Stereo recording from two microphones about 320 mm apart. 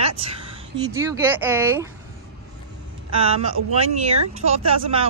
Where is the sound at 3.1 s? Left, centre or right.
Centre.